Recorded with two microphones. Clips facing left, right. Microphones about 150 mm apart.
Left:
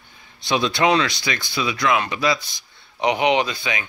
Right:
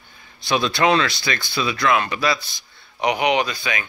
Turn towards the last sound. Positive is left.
turn(degrees=20)  # may be behind; listen again after turning